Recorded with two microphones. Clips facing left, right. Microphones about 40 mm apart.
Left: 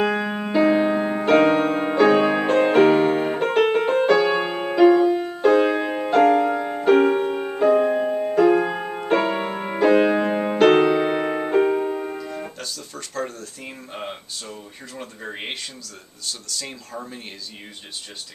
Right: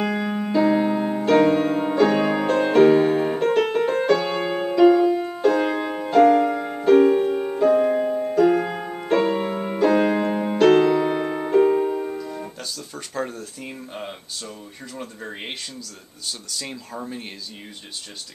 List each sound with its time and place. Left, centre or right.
0.0 s music: left
6.9 s music: left
11.7 s music: centre
12.5 s music: centre
13.7 s a sound: centre
16.3 s speech: centre